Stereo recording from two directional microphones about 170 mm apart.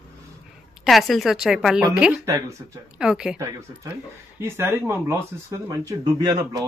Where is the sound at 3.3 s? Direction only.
15° right (ahead or behind).